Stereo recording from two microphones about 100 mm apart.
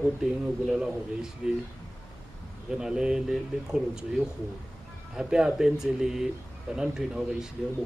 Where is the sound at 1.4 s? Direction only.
5° right (ahead or behind).